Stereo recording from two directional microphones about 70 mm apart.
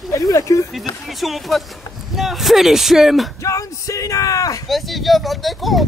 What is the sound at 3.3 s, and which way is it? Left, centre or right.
Speech, left.